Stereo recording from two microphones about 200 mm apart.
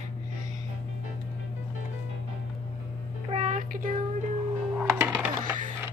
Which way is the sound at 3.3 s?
35° right (ahead or behind).